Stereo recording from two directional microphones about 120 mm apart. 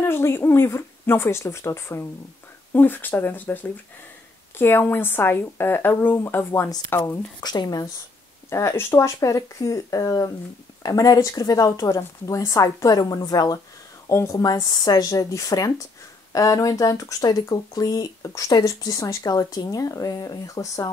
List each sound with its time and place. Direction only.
0.0 s a woman's voice: 20° left (ahead or behind)
7.3 s speech: 35° left (ahead or behind)
8.5 s speech: 20° left (ahead or behind)